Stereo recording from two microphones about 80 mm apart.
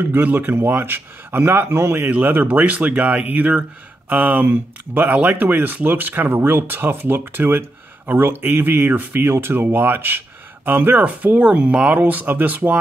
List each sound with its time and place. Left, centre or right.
0.0 s speech: right